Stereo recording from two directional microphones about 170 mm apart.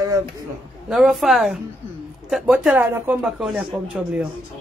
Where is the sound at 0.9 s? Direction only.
Centre (ahead or behind).